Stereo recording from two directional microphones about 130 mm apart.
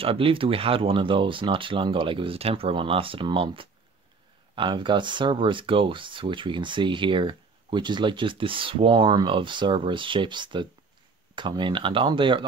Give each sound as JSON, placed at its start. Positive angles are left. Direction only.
{"t": 0.0, "sound": "speech", "side_deg": -45}